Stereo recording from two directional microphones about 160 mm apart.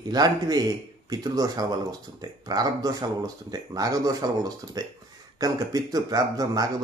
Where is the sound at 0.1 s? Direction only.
25° right (ahead or behind).